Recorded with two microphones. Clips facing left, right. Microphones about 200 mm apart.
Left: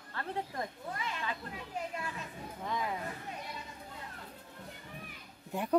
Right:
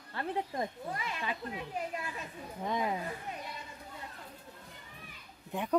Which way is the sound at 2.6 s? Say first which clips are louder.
Right 4 dB; 20° right (ahead or behind).